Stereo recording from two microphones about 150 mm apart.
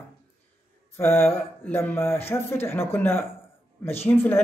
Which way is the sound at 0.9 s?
15° left (ahead or behind).